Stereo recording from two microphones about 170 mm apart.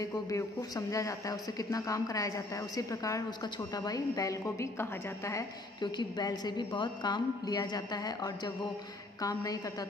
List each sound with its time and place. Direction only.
0.0 s a woman's voice: 20° left (ahead or behind)